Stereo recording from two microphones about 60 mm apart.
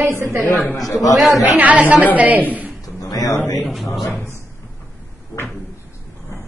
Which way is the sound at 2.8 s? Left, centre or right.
Left.